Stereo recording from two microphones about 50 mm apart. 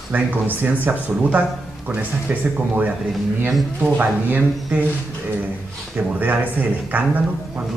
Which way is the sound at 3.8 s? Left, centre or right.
Right.